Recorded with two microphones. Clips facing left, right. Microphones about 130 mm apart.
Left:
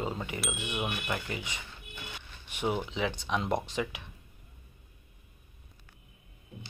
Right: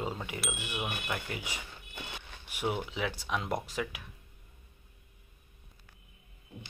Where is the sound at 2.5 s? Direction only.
5° right (ahead or behind).